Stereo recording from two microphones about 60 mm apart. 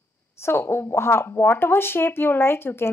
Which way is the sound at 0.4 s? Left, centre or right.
Left.